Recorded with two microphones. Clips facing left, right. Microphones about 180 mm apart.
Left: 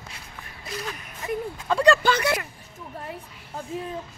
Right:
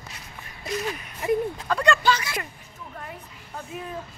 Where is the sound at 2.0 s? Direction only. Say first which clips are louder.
Left 2 dB; 60° left (ahead or behind).